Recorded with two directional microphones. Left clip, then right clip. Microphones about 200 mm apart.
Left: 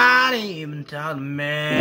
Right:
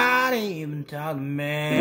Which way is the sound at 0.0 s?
5° right (ahead or behind).